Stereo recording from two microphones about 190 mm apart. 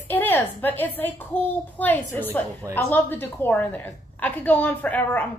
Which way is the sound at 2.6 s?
15° right (ahead or behind).